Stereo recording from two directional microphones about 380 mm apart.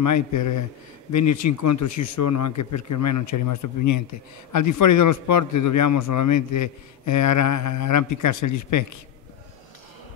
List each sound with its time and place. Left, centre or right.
0.0 s a man's voice: left